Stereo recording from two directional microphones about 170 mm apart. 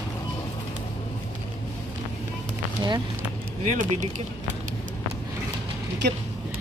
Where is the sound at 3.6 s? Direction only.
45° right (ahead or behind).